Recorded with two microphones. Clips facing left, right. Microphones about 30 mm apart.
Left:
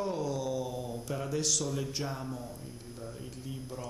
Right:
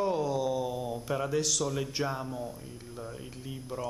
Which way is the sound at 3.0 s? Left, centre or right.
Right.